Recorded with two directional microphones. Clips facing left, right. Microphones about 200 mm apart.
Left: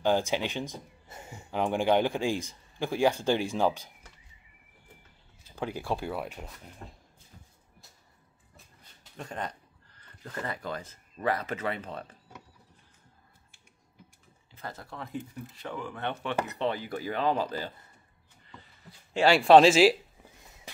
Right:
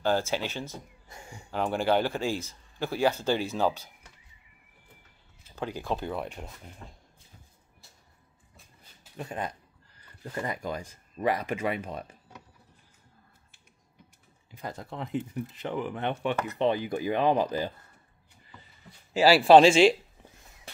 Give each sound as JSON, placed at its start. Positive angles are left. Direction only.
{"t": 0.0, "sound": "speech", "side_deg": 15}
{"t": 1.0, "sound": "speech", "side_deg": 5}
{"t": 5.6, "sound": "speech", "side_deg": 10}
{"t": 9.1, "sound": "speech", "side_deg": -10}
{"t": 14.5, "sound": "speech", "side_deg": -15}
{"t": 18.5, "sound": "speech", "side_deg": -5}